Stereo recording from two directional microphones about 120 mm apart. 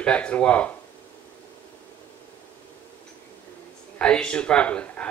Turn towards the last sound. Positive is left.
turn(degrees=10)  # may be behind; listen again after turning